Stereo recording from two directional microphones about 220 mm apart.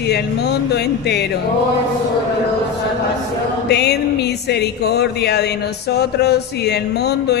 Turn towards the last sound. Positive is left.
turn(degrees=50)  # may be behind; listen again after turning